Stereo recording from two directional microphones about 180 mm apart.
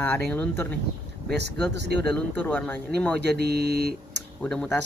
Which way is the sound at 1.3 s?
70° right (ahead or behind).